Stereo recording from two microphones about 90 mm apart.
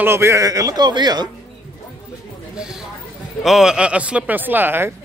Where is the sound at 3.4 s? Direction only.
5° right (ahead or behind); by 4.9 s 25° right (ahead or behind).